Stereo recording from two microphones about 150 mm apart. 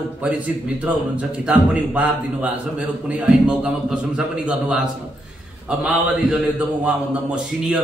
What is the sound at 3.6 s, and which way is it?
A man's voice, 5° right (ahead or behind).